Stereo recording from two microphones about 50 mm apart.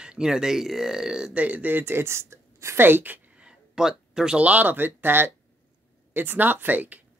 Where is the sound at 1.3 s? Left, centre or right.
Right.